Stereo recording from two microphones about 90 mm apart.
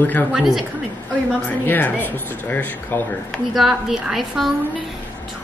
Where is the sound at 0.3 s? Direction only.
5° right (ahead or behind).